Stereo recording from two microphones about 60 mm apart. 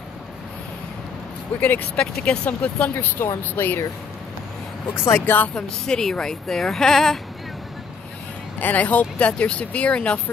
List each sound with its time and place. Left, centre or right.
1.6 s speech: left
2.0 s a woman's voice: centre
3.2 s speech: left
4.9 s speech: left
5.5 s a woman's voice: centre
8.5 s speech: left